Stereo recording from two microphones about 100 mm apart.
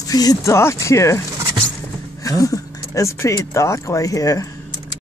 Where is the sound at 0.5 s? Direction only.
30° left (ahead or behind).